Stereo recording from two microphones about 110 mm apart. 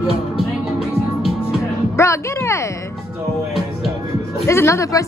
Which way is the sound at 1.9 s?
25° left (ahead or behind).